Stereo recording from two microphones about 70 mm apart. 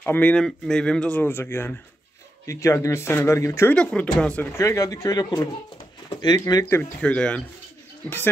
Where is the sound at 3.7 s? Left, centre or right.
Centre.